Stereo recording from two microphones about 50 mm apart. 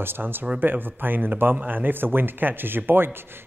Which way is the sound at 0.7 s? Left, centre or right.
Right.